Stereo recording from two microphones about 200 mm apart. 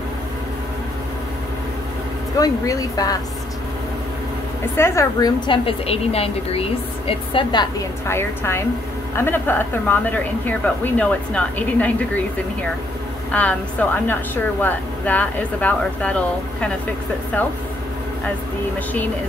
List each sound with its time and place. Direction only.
2.3 s a woman's voice: 15° left (ahead or behind)
4.7 s a woman's voice: 15° left (ahead or behind)
5.5 s a woman's voice: 30° left (ahead or behind); by 11.9 s 5° left (ahead or behind)
13.3 s a woman's voice: 5° left (ahead or behind)